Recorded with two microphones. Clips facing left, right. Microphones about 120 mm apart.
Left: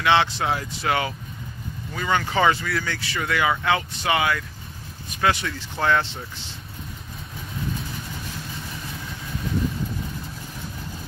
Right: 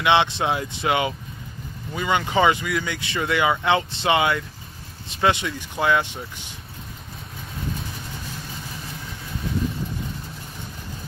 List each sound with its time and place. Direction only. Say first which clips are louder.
0.0 s speech: right 1 dB; 20° right (ahead or behind)